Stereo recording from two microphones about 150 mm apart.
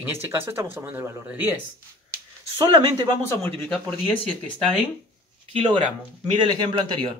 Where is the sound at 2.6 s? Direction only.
30° right (ahead or behind).